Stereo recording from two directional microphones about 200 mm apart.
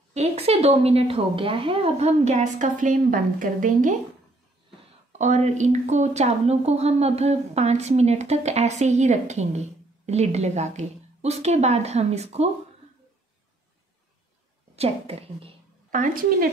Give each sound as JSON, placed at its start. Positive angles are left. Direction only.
{"t": 0.1, "sound": "a woman's voice", "side_deg": -30}
{"t": 5.1, "sound": "a woman's voice", "side_deg": -35}
{"t": 14.8, "sound": "a woman's voice", "side_deg": -30}